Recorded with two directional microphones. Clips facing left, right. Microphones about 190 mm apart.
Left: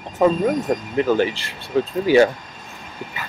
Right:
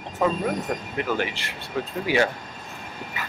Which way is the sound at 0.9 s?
30° left (ahead or behind).